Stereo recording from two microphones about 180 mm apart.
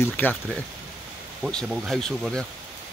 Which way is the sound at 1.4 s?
5° left (ahead or behind).